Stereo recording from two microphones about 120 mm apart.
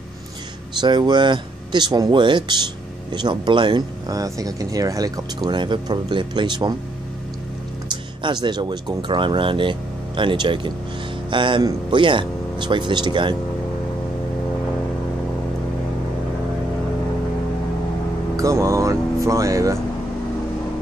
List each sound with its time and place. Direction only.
0.7 s speech: 40° right (ahead or behind)
7.9 s speech: 40° right (ahead or behind)
18.3 s music: 25° right (ahead or behind)